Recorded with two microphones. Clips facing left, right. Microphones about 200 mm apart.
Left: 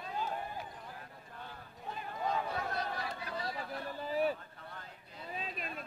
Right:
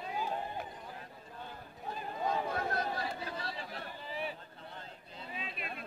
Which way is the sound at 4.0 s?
40° left (ahead or behind).